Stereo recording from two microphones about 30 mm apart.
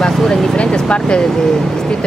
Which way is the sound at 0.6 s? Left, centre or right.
Left.